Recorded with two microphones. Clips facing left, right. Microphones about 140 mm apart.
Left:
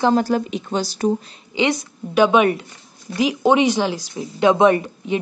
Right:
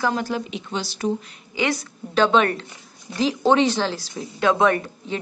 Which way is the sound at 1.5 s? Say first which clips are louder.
Left 4 dB; 15° left (ahead or behind).